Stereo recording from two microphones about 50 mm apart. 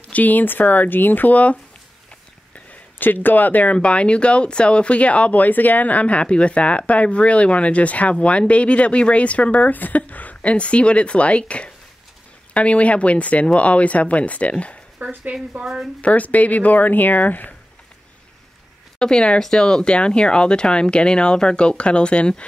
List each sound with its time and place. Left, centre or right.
0.1 s speech: left
3.0 s speech: left
3.7 s speech: left
15.0 s speech: right
15.6 s a woman's voice: centre
16.0 s speech: left
18.9 s speech: centre